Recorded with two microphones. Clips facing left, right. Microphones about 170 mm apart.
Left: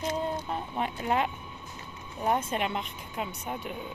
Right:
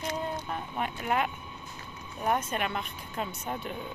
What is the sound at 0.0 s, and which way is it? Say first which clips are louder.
Speech: left 3 dB; 30° left (ahead or behind).